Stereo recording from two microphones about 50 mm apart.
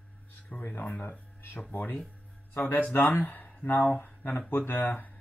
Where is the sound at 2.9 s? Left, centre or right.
Left.